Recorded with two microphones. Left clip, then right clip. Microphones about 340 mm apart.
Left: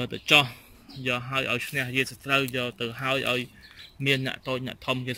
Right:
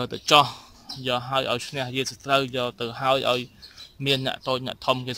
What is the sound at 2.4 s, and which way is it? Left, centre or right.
Speech, centre.